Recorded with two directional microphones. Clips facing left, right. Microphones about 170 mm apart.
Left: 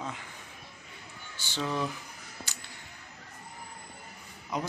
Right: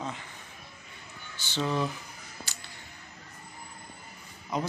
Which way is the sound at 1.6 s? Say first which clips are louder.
Right 3 dB; 20° right (ahead or behind).